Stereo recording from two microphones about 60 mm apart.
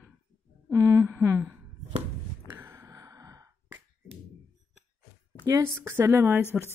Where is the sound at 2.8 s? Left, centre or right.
Right.